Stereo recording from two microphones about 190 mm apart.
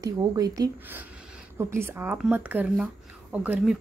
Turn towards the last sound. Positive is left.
turn(degrees=-5)  # may be behind; listen again after turning